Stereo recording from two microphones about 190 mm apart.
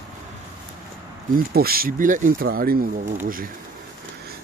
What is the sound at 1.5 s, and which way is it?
Speech, 50° right (ahead or behind).